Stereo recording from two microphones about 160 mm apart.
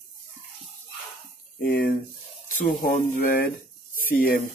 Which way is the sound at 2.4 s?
60° left (ahead or behind).